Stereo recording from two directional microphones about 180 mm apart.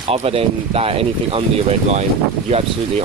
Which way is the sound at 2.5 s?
35° right (ahead or behind).